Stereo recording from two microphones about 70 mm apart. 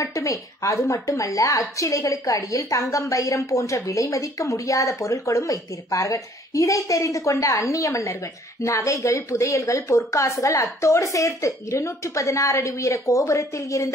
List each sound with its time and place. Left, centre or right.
0.0 s a woman's voice: left